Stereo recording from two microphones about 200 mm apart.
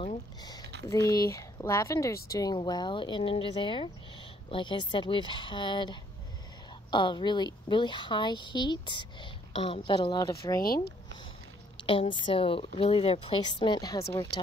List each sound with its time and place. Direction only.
0.4 s a sound: 20° left (ahead or behind)
0.8 s speech: 15° left (ahead or behind)
11.7 s speech: 25° left (ahead or behind)